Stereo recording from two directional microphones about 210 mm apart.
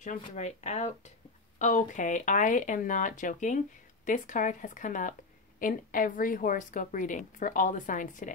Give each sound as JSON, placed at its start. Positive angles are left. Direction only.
{"t": 0.0, "sound": "speech", "side_deg": 35}